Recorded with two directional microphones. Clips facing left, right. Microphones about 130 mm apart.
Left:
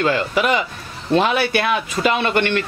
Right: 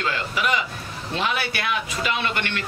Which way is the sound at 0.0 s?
45° left (ahead or behind).